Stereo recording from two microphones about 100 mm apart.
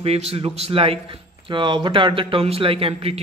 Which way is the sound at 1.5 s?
55° right (ahead or behind).